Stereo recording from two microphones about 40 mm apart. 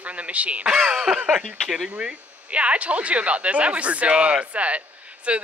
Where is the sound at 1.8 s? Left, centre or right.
Right.